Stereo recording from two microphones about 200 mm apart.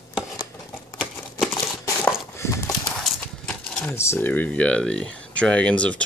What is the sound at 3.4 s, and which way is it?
Speech, 5° left (ahead or behind).